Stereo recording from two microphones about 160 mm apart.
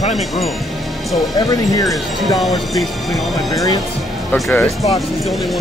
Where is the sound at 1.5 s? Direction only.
20° left (ahead or behind).